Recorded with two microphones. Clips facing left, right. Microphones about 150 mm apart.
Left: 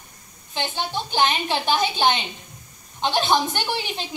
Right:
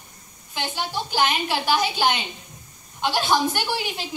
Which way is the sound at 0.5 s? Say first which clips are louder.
Left 1 dB; 25° left (ahead or behind).